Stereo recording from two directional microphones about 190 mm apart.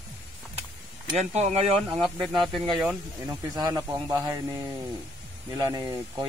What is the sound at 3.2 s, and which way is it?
Speech, 20° right (ahead or behind).